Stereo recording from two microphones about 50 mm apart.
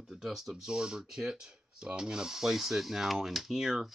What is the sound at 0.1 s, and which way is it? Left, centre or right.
Speech, centre.